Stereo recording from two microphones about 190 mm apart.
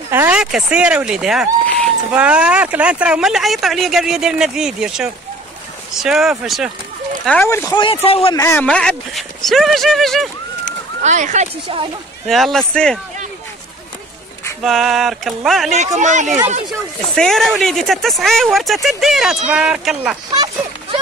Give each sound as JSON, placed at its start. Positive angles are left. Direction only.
{"t": 0.1, "sound": "speech", "side_deg": -10}
{"t": 7.2, "sound": "speech", "side_deg": 10}
{"t": 8.4, "sound": "speech", "side_deg": 10}
{"t": 11.0, "sound": "speech", "side_deg": -40}
{"t": 12.3, "sound": "speech", "side_deg": 0}
{"t": 14.6, "sound": "speech", "side_deg": 0}
{"t": 15.7, "sound": "speech", "side_deg": -40}
{"t": 17.1, "sound": "speech", "side_deg": 0}